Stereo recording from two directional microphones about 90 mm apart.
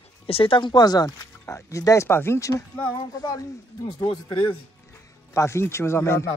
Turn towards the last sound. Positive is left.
turn(degrees=30)  # may be behind; listen again after turning